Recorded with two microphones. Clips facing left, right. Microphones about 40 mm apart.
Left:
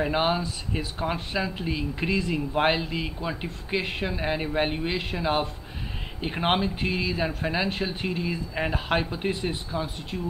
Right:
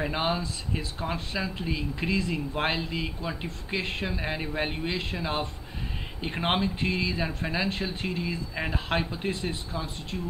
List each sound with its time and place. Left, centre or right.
0.1 s speech: centre